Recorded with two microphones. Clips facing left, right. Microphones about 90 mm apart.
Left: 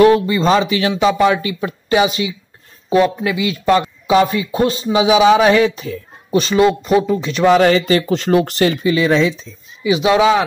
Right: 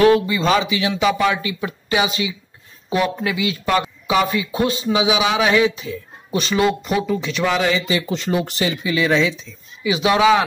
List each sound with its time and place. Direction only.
0.0 s speech: 40° left (ahead or behind); by 8.7 s 55° left (ahead or behind)
8.8 s speech: 35° left (ahead or behind)